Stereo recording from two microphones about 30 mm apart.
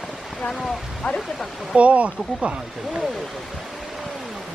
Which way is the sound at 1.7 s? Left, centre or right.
Right.